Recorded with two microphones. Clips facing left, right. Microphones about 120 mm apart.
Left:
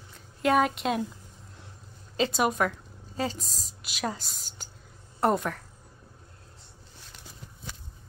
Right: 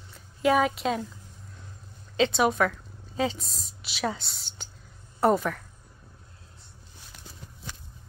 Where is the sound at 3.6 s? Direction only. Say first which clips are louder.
Right 2 dB; 45° left (ahead or behind).